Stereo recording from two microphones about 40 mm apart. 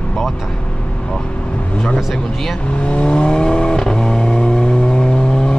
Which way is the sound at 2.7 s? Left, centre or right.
Left.